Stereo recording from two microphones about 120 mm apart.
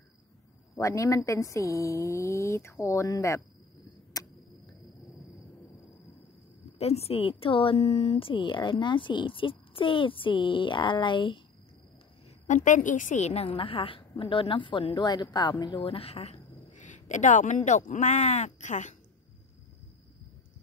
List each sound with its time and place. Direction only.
0.7 s a woman's voice: 25° left (ahead or behind)
4.1 s tick-tock: 30° left (ahead or behind)
6.8 s speech: 60° left (ahead or behind); by 11.4 s 45° left (ahead or behind)
12.6 s a woman's voice: 90° left; by 16.3 s 60° left (ahead or behind)
16.7 s speech: 90° left